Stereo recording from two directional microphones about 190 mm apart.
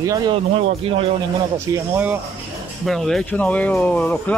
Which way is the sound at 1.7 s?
10° right (ahead or behind).